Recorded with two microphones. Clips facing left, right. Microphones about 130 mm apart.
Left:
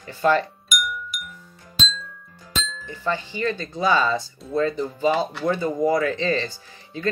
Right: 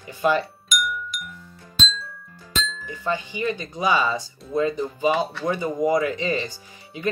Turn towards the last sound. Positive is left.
turn(degrees=-15)  # may be behind; listen again after turning